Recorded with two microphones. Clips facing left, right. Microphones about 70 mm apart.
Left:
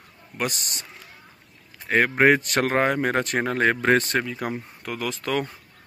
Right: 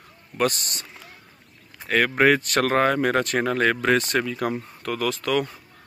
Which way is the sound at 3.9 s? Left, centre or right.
Left.